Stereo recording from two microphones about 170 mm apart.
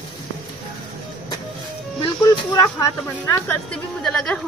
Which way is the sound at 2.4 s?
25° left (ahead or behind).